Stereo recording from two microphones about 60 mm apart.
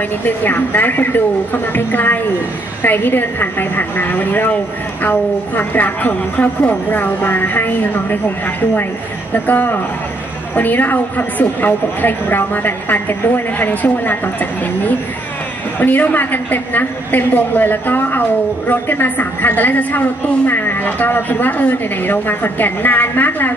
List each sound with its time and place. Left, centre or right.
0.2 s a woman's voice: left